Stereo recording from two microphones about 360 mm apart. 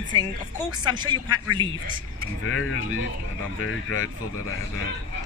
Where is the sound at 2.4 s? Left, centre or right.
Left.